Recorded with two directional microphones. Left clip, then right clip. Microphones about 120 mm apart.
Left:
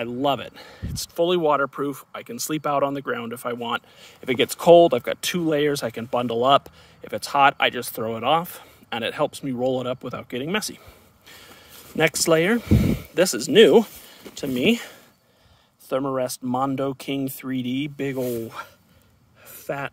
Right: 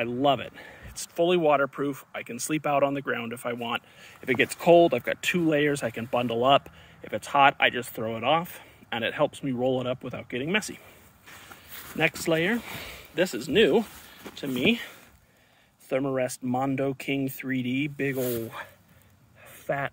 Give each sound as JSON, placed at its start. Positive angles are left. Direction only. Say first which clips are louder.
{"t": 0.0, "sound": "speech", "louder": "left 1 dB", "side_deg": 25}
{"t": 8.9, "sound": "speech", "louder": "left 2 dB", "side_deg": 25}
{"t": 10.0, "sound": "speech", "louder": "left 3 dB", "side_deg": 40}
{"t": 12.0, "sound": "speech", "louder": "left 6 dB", "side_deg": 85}
{"t": 14.3, "sound": "speech", "louder": "left 4 dB", "side_deg": 55}
{"t": 15.9, "sound": "speech", "louder": "left 3 dB", "side_deg": 25}
{"t": 19.6, "sound": "speech", "louder": "even", "side_deg": 25}